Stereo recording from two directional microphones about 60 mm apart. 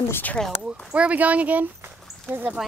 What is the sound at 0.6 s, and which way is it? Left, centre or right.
Speech, centre.